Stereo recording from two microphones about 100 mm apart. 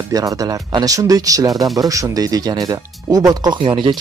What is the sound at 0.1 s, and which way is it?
Speech, 35° right (ahead or behind).